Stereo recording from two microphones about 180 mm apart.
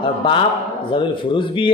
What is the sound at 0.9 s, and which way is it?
Speech, 25° left (ahead or behind).